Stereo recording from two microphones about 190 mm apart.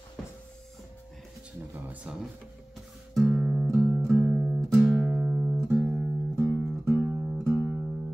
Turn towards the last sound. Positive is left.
turn(degrees=-10)  # may be behind; listen again after turning